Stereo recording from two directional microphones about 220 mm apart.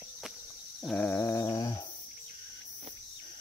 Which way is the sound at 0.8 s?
5° left (ahead or behind).